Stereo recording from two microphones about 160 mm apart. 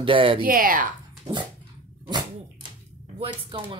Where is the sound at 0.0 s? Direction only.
35° right (ahead or behind).